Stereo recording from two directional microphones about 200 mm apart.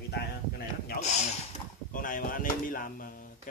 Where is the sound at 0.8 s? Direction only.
35° left (ahead or behind).